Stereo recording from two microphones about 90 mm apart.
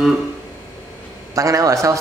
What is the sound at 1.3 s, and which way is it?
Speech, 40° right (ahead or behind).